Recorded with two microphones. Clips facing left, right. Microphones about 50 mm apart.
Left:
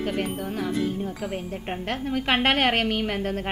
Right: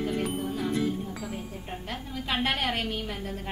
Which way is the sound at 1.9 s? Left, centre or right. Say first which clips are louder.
Left 8 dB; left.